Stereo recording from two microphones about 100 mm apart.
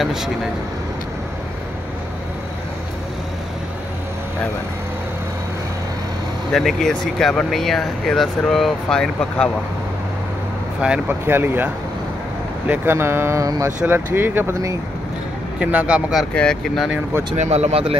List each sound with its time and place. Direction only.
0.0 s speech: 5° right (ahead or behind)
6.5 s speech: 5° left (ahead or behind)
10.8 s speech: 10° right (ahead or behind); by 13.7 s 35° right (ahead or behind)
13.7 s speech: 20° right (ahead or behind)
15.6 s speech: 15° right (ahead or behind)
16.3 s speech: 5° left (ahead or behind)
17.5 s speech: 90° right